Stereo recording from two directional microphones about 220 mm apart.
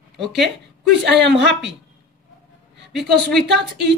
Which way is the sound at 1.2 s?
55° right (ahead or behind).